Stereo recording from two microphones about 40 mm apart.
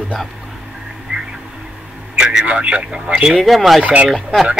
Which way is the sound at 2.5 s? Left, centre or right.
Right.